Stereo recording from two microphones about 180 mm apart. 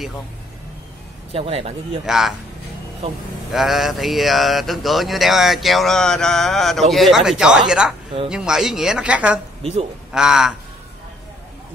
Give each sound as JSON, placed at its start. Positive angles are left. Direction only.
{"t": 1.3, "sound": "speech", "side_deg": -35}
{"t": 2.0, "sound": "speech", "side_deg": 0}
{"t": 3.5, "sound": "speech", "side_deg": 0}